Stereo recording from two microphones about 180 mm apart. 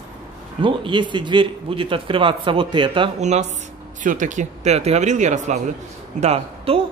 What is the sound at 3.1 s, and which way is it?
Speech, 40° right (ahead or behind).